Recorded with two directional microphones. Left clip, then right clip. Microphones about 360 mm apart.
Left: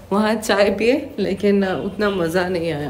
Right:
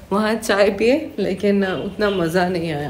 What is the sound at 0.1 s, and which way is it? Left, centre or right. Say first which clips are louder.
A woman's voice: even; centre.